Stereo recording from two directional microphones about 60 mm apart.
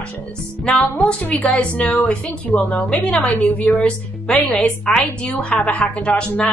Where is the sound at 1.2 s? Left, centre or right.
Left.